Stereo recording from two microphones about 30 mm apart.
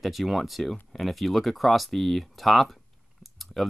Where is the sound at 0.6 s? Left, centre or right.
Centre.